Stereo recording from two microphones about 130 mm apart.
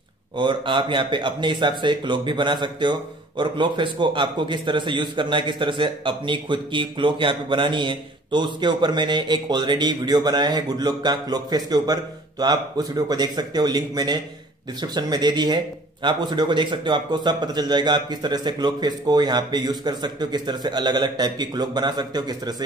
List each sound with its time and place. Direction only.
0.4 s speech: 40° right (ahead or behind)